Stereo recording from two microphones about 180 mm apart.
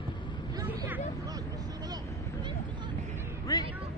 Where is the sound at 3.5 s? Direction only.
20° left (ahead or behind).